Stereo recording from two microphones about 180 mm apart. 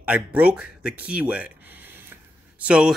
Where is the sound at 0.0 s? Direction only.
5° right (ahead or behind).